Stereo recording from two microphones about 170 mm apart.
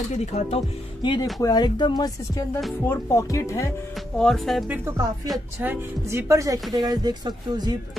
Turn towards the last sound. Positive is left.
turn(degrees=-25)  # may be behind; listen again after turning